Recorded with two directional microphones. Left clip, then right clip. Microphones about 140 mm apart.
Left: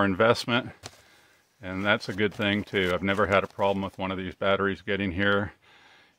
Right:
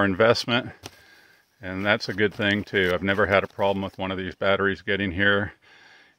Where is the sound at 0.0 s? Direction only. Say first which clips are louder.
Right 3 dB; 20° right (ahead or behind).